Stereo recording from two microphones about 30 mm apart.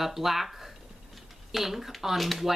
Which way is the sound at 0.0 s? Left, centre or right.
Centre.